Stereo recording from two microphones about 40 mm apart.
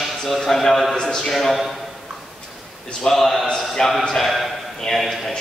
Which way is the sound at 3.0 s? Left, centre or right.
Centre.